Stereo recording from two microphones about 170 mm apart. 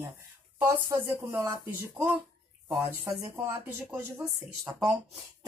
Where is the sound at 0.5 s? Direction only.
15° right (ahead or behind).